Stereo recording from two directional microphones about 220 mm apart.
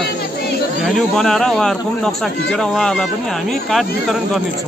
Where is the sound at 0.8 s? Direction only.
Centre (ahead or behind).